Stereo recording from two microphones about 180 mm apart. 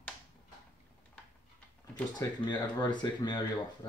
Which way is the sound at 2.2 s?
25° left (ahead or behind).